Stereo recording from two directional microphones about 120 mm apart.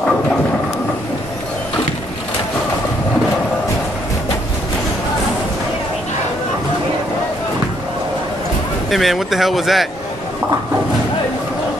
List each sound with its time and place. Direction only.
8.9 s speech: centre (ahead or behind)